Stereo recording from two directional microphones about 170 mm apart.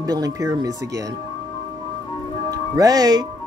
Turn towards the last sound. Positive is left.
turn(degrees=-20)  # may be behind; listen again after turning